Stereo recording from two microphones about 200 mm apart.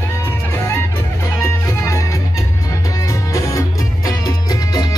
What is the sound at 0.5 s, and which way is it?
Music, 15° left (ahead or behind).